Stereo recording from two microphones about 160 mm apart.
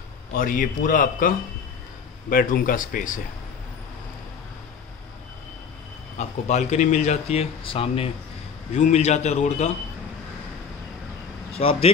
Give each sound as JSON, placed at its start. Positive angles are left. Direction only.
{"t": 0.3, "sound": "a man's voice", "side_deg": 60}
{"t": 6.1, "sound": "speech", "side_deg": 45}
{"t": 8.7, "sound": "speech", "side_deg": 45}
{"t": 11.5, "sound": "speech", "side_deg": 35}